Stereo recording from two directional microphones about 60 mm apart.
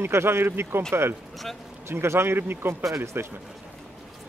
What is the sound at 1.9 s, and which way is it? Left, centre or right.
Speech, right.